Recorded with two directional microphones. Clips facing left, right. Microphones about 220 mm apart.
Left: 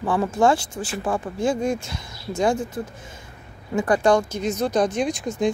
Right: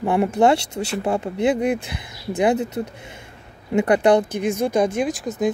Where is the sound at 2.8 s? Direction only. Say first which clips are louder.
Right 3 dB; 25° right (ahead or behind).